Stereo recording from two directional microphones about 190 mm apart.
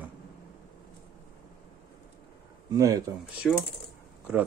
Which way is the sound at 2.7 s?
15° right (ahead or behind).